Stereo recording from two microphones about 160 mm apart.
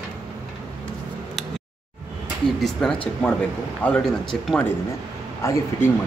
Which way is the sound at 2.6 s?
5° left (ahead or behind).